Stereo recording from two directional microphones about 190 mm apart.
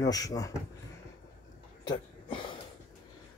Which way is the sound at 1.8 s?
25° left (ahead or behind).